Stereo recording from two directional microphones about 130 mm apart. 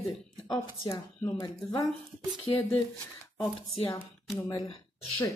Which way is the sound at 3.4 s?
40° left (ahead or behind).